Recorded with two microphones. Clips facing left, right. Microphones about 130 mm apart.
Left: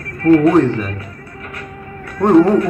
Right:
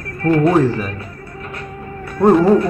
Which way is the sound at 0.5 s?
5° right (ahead or behind).